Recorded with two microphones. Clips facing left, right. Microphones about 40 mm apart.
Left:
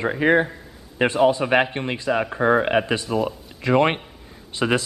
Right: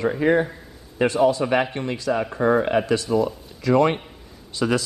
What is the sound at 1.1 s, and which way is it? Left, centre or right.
Speech, left.